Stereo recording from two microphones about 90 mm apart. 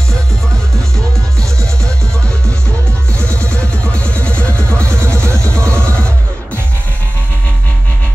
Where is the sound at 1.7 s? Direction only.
10° left (ahead or behind).